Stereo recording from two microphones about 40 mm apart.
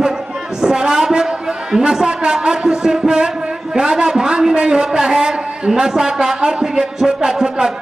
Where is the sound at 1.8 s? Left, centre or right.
Centre.